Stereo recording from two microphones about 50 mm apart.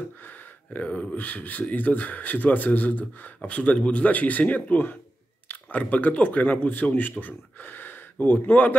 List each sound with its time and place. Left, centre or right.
0.7 s speech: left